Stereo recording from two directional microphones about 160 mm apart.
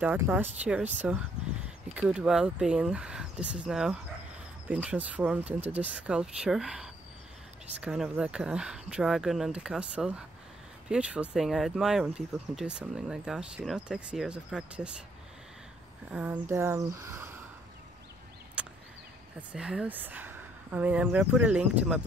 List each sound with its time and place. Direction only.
0.0 s speech: 10° right (ahead or behind)
16.1 s speech: 10° right (ahead or behind)
18.6 s a sound: 5° right (ahead or behind)
19.5 s speech: 5° right (ahead or behind)